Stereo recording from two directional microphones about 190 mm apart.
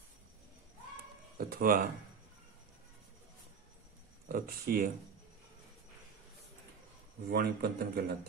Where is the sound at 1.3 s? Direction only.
50° right (ahead or behind).